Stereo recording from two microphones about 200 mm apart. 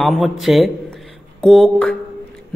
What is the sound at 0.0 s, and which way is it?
Speech, centre (ahead or behind).